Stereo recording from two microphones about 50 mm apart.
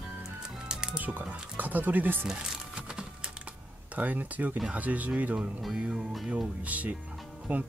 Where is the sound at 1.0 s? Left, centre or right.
Right.